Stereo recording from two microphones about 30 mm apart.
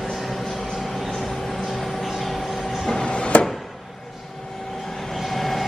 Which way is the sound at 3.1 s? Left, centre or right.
Left.